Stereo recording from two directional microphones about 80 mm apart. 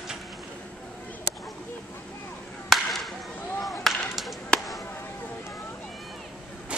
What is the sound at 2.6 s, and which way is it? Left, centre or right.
Chop, centre.